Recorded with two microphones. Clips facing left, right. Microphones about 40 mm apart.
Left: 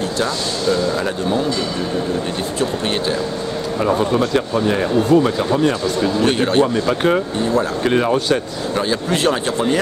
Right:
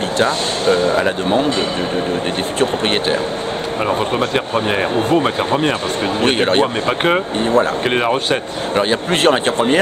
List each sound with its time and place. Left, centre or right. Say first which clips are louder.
0.2 s speech: right 5 dB; right
3.8 s speech: left 1 dB; right